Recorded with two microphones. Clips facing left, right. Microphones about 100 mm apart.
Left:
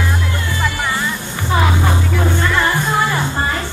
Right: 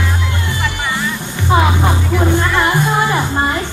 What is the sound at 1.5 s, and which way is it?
Music, 20° right (ahead or behind).